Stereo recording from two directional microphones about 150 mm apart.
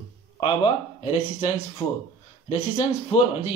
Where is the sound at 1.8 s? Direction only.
10° left (ahead or behind).